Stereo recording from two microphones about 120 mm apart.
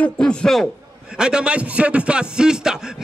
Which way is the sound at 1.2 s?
5° right (ahead or behind).